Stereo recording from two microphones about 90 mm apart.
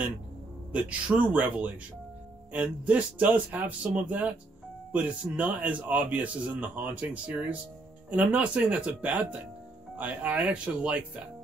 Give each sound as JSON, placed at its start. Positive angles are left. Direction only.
{"t": 0.7, "sound": "a man's voice", "side_deg": -15}